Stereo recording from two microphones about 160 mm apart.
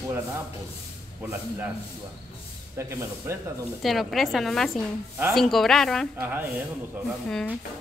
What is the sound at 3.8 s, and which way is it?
A woman's voice, centre (ahead or behind).